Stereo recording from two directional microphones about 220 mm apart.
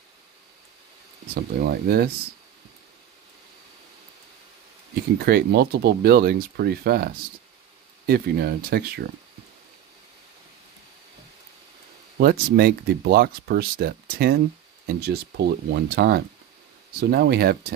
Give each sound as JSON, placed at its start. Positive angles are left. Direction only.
{"t": 1.3, "sound": "speech", "side_deg": -45}
{"t": 5.2, "sound": "speech", "side_deg": -45}
{"t": 12.2, "sound": "speech", "side_deg": -45}